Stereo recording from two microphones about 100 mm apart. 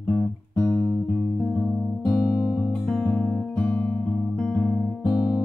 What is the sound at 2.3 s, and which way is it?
Music, 30° left (ahead or behind).